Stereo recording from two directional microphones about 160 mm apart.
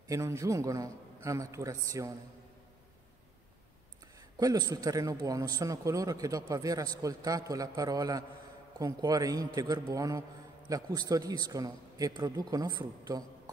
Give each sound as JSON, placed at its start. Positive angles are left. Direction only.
{"t": 0.1, "sound": "a man's voice", "side_deg": -20}
{"t": 4.4, "sound": "a man's voice", "side_deg": -25}